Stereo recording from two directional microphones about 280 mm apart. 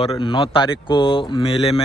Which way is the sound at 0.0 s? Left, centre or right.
Centre.